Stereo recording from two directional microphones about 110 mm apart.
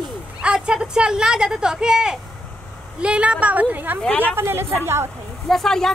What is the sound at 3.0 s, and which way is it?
Speech, 10° right (ahead or behind).